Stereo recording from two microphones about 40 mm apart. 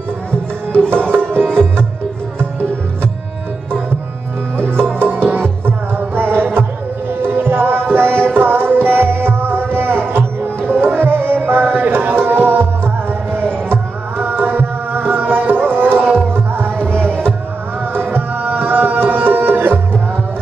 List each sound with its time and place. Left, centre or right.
1.4 s music: centre
4.9 s music: right
10.9 s tabla: right
12.3 s music: right
17.9 s tabla: right